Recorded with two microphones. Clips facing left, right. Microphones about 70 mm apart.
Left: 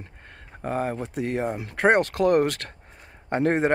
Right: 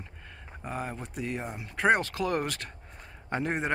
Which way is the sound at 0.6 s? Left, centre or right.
Left.